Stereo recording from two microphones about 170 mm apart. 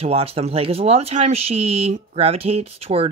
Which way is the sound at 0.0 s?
35° right (ahead or behind).